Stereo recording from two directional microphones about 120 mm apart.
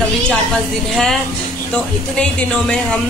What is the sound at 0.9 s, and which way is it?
A man's voice, 5° left (ahead or behind).